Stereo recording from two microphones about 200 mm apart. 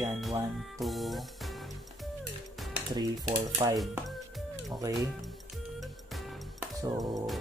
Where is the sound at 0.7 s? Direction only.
Centre (ahead or behind).